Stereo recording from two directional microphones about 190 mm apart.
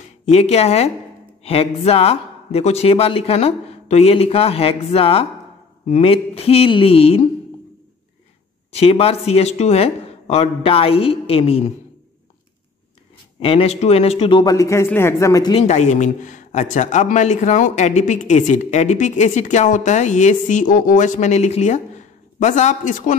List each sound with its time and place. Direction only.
0.2 s speech: 35° left (ahead or behind)
8.7 s speech: 30° left (ahead or behind)
13.4 s a man's voice: 30° left (ahead or behind)
15.5 s speech: 35° left (ahead or behind)